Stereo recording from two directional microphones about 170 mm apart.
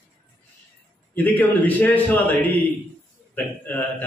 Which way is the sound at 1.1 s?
10° left (ahead or behind).